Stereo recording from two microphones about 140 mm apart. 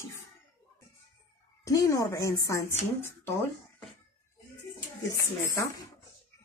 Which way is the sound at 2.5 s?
15° left (ahead or behind).